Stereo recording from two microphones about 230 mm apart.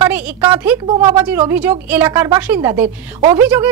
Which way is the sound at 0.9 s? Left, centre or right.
Right.